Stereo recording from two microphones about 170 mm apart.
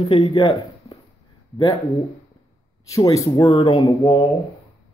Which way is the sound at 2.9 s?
20° left (ahead or behind).